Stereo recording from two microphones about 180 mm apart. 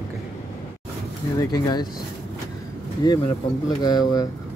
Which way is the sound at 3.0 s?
20° left (ahead or behind).